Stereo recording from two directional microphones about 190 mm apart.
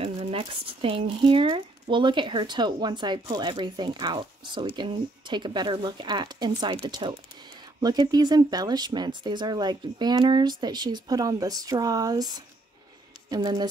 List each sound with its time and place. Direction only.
0.0 s speech: 30° right (ahead or behind)